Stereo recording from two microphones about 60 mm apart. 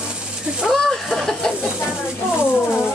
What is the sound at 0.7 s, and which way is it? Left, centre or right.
Speech, centre.